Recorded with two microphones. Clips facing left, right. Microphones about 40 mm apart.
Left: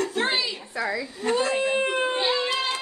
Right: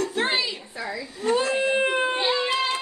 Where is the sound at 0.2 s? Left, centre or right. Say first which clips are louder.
Right 1 dB; centre.